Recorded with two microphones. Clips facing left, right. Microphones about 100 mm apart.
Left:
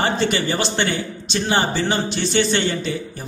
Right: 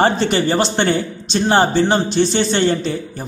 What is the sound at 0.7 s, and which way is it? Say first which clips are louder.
A man's voice: right 5 dB; 50° right (ahead or behind).